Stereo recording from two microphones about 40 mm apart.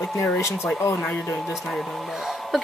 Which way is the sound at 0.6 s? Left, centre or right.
Left.